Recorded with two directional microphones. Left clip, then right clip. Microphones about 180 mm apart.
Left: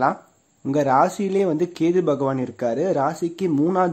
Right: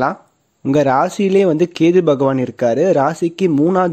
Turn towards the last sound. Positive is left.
turn(degrees=-30)  # may be behind; listen again after turning